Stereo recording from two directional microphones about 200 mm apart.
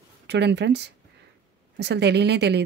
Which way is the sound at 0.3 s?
60° right (ahead or behind).